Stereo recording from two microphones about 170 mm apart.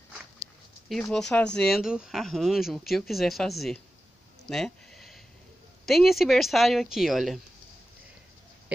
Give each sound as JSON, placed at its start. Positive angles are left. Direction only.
{"t": 1.1, "sound": "speech", "side_deg": 5}
{"t": 4.5, "sound": "a sound", "side_deg": 5}
{"t": 5.9, "sound": "speech", "side_deg": 0}